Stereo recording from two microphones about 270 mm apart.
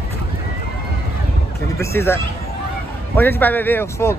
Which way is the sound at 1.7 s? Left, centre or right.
Centre.